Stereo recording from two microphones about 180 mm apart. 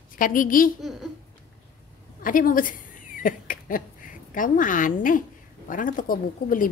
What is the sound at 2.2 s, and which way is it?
A woman's voice, 50° left (ahead or behind).